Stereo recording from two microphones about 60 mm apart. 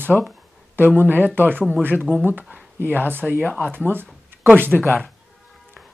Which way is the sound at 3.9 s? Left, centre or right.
Right.